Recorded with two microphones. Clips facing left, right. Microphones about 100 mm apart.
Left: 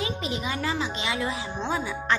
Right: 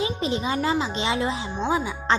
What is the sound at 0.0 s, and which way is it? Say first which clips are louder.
Speech: right 4 dB; 30° right (ahead or behind).